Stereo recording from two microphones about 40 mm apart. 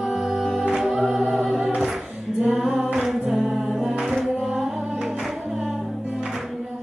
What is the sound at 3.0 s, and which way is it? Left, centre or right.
Music, centre.